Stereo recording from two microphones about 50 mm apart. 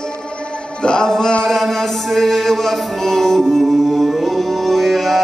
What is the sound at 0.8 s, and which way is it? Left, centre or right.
Music, centre.